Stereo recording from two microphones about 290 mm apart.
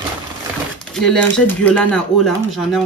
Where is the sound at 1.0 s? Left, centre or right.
Centre.